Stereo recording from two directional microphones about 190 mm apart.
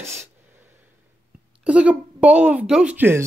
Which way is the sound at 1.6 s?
5° right (ahead or behind).